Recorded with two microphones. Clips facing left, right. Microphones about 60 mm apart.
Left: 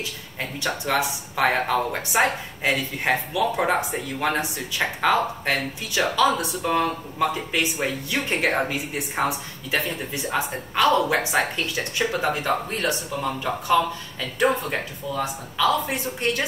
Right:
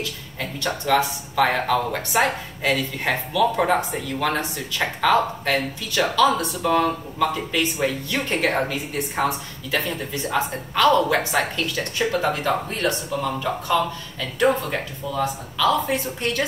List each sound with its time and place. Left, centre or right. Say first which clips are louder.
0.0 s speech: right 2 dB; left